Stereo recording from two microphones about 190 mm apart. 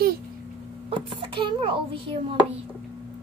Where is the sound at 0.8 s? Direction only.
30° right (ahead or behind).